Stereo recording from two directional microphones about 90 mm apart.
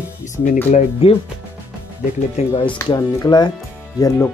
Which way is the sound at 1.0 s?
90° left.